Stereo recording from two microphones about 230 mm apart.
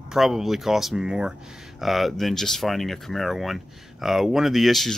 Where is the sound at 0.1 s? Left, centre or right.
Centre.